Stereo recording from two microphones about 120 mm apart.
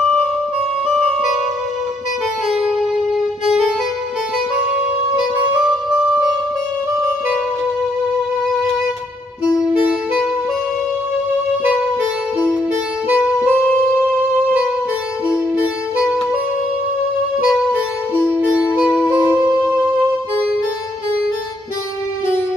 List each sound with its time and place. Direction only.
0.8 s music: centre (ahead or behind)
2.5 s music: centre (ahead or behind)
5.9 s music: 10° right (ahead or behind)
9.4 s saxophone: 10° right (ahead or behind)
13.1 s saxophone: 10° right (ahead or behind)
18.2 s music: 15° right (ahead or behind)